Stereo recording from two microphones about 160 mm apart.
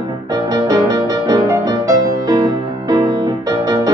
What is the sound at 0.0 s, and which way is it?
Music, 25° right (ahead or behind).